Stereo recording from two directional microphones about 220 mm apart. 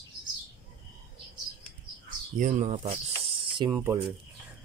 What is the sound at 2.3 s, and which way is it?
Speech, 35° right (ahead or behind).